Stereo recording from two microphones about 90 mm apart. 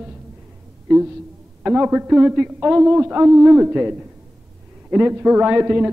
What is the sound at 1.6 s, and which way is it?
A man's voice, 15° right (ahead or behind).